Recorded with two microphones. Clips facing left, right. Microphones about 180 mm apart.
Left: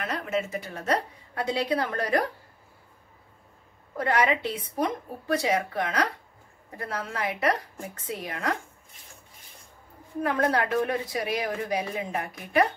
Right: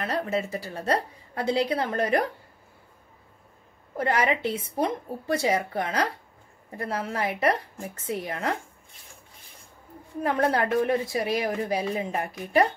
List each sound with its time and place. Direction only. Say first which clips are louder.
0.0 s a woman's voice: right 2 dB; 35° right (ahead or behind)
3.9 s a woman's voice: even; 30° right (ahead or behind)
10.2 s a woman's voice: right 1 dB; 25° right (ahead or behind)